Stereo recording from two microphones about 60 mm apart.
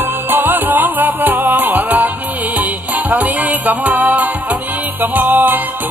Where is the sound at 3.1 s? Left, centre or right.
Right.